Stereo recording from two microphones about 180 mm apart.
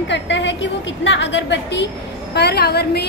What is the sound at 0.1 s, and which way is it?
A woman's voice, 80° left.